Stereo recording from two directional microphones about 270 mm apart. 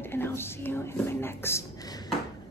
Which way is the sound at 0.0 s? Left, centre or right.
Centre.